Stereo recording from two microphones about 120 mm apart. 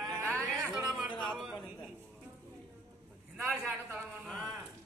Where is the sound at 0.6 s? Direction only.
5° right (ahead or behind).